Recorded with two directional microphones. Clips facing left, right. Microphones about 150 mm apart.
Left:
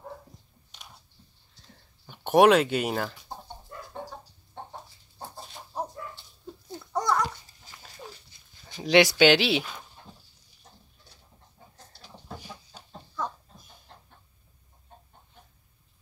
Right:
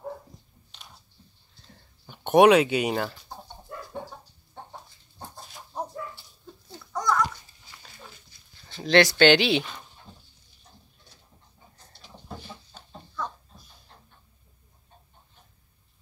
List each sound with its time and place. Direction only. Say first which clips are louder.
1.7 s chicken: right 1 dB; centre (ahead or behind)
4.8 s dog: left 1 dB; centre (ahead or behind)
6.9 s babbling: even; 30° left (ahead or behind)
8.6 s speech: even; 15° left (ahead or behind)
11.9 s chicken: right 1 dB; 5° left (ahead or behind)